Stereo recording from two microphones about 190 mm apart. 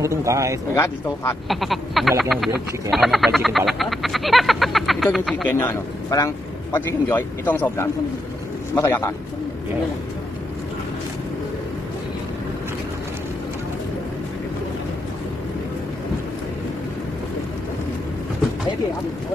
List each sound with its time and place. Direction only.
0.0 s speech: 15° right (ahead or behind)
0.7 s speech: 10° left (ahead or behind)
1.5 s frog: centre (ahead or behind)
5.5 s speech: 10° left (ahead or behind)